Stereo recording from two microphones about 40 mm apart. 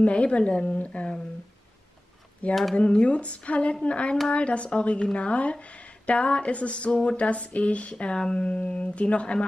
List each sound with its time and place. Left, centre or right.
0.0 s a woman's voice: left
2.7 s a woman's voice: left
6.9 s speech: centre
7.2 s a woman's voice: left
7.9 s a woman's voice: left